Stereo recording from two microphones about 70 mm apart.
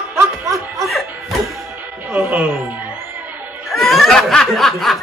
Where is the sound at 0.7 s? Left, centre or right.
Centre.